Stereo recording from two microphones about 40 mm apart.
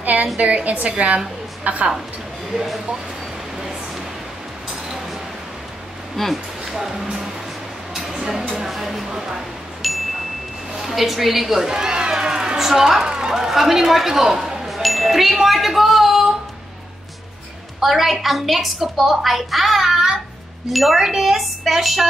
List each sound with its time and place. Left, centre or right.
0.0 s a sound: right
0.4 s a woman's voice: right
2.5 s a woman's voice: centre
6.1 s a woman's voice: centre
6.6 s speech: centre
8.5 s a woman's voice: centre
9.8 s chime: centre
10.8 s a woman's voice: centre
11.7 s speech: centre
17.7 s a woman's voice: centre